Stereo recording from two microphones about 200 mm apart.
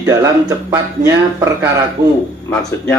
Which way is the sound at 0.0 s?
15° right (ahead or behind).